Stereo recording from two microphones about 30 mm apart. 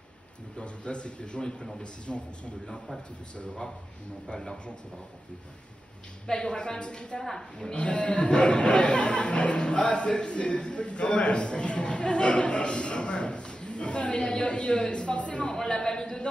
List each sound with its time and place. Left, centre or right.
0.6 s speech: left
6.3 s speech: left
15.5 s speech: left